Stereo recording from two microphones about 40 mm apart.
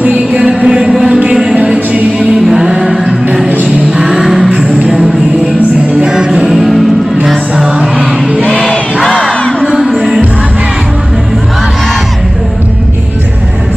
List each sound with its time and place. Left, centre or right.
0.3 s music: right
3.4 s music: right
3.9 s music: centre
6.5 s music: centre
8.5 s crowd: centre
9.7 s music: centre